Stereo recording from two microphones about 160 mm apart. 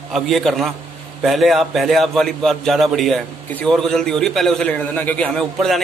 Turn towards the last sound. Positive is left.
turn(degrees=0)  # may be behind; listen again after turning